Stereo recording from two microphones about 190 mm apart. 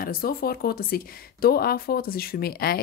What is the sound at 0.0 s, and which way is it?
Speech, 50° left (ahead or behind).